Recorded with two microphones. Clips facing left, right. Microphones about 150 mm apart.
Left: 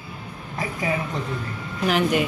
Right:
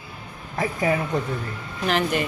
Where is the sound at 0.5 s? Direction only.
40° right (ahead or behind).